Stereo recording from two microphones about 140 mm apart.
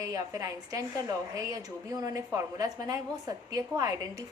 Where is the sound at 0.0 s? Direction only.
25° right (ahead or behind).